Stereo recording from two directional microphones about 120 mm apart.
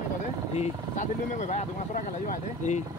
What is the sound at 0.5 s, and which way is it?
Speech, 80° left.